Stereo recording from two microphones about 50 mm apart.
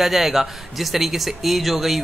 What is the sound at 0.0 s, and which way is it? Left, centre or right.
Speech, centre.